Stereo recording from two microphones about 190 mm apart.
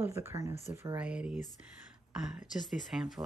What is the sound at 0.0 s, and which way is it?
Speech, 15° right (ahead or behind).